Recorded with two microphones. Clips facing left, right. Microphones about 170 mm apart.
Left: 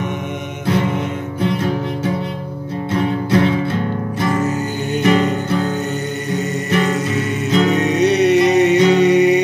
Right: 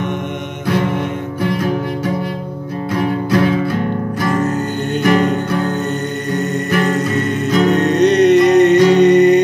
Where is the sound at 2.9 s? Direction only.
25° left (ahead or behind).